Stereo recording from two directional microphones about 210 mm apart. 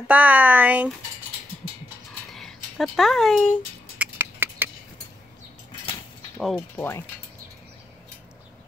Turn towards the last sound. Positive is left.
turn(degrees=10)  # may be behind; listen again after turning